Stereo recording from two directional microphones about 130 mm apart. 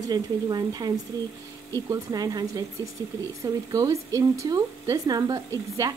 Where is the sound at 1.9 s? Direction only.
30° right (ahead or behind).